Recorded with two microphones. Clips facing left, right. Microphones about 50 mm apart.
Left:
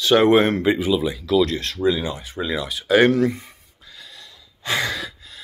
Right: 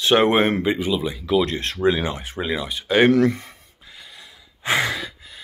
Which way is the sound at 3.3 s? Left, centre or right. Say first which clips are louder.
Right 2 dB; right.